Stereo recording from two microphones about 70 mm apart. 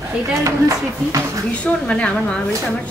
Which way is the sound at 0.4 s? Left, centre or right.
Right.